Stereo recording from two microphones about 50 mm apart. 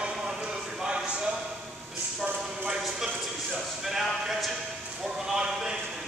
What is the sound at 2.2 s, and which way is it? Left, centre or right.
Clip-clop, centre.